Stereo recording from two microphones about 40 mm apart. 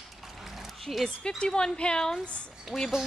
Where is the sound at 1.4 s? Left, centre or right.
Centre.